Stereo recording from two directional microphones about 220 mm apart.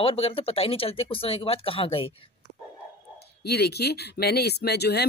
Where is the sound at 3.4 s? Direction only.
45° left (ahead or behind).